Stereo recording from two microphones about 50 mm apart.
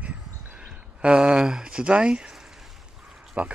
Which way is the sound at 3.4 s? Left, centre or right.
Right.